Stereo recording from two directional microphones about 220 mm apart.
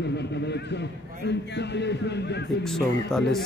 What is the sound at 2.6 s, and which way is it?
Speech, centre (ahead or behind).